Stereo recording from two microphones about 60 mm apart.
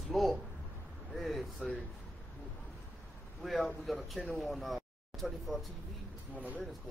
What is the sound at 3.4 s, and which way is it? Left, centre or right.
A man's voice, centre.